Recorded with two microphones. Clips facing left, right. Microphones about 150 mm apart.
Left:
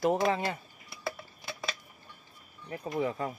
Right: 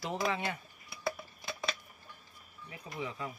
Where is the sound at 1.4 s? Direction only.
5° left (ahead or behind).